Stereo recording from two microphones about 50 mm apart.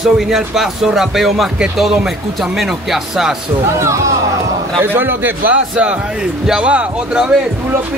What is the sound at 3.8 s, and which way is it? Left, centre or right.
Speech, right.